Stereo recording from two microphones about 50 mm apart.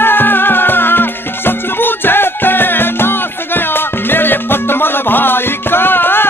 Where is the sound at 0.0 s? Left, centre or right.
Left.